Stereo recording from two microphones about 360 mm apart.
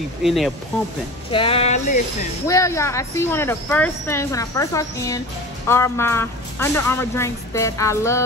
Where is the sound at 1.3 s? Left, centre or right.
Centre.